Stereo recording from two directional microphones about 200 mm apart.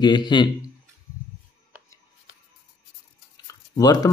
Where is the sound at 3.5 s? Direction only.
20° left (ahead or behind).